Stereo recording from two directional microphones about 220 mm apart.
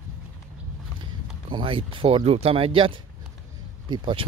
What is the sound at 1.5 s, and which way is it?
Speech, 25° right (ahead or behind).